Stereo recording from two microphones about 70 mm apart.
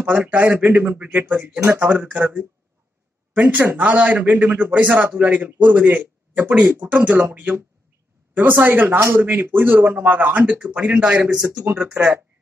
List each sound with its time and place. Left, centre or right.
0.1 s a man's voice: right